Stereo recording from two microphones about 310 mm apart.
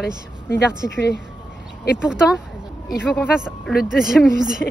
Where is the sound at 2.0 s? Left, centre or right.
Centre.